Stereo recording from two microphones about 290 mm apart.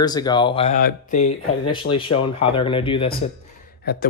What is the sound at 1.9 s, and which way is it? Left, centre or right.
Speech, left.